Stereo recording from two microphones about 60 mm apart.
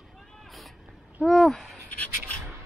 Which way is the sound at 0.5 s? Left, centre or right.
Centre.